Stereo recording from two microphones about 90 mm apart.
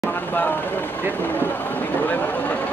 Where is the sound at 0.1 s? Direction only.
20° left (ahead or behind).